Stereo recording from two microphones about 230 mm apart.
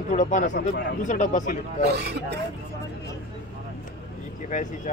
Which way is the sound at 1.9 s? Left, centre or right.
Right.